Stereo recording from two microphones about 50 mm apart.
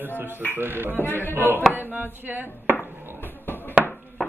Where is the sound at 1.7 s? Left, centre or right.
Right.